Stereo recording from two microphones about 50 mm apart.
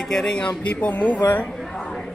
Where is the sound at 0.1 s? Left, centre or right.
Centre.